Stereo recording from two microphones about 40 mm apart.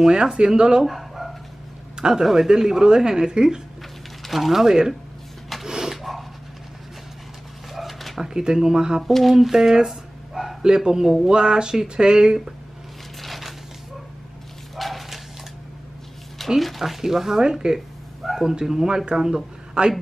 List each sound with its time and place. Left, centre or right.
0.0 s speech: centre
0.8 s dog: centre
2.0 s speech: centre
4.2 s speech: centre
5.7 s a sound: centre
7.7 s dog: centre
8.2 s speech: centre
9.3 s dog: centre
10.6 s speech: centre
13.2 s a sound: centre
14.8 s horse: centre
16.4 s speech: centre
17.7 s speech: centre